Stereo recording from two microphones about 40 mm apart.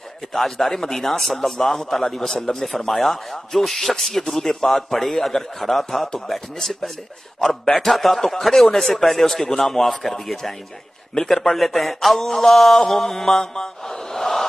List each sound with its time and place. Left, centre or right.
0.3 s a man's voice: centre
13.4 s mantra: centre